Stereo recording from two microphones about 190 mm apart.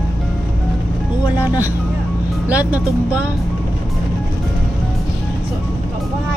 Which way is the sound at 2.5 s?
10° right (ahead or behind).